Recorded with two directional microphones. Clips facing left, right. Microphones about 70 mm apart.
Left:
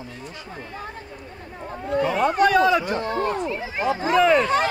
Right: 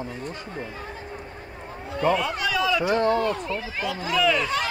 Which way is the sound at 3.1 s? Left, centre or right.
Left.